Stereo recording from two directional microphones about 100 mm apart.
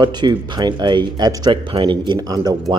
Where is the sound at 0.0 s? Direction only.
45° right (ahead or behind).